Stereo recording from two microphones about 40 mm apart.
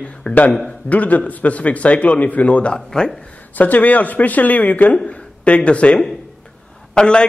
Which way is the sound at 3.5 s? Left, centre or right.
Left.